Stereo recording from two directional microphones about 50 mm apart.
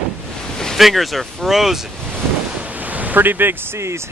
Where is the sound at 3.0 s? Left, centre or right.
Right.